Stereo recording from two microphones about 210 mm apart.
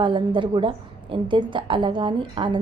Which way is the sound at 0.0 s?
25° right (ahead or behind).